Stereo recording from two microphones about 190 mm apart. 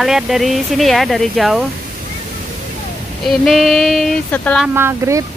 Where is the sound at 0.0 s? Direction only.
Centre (ahead or behind).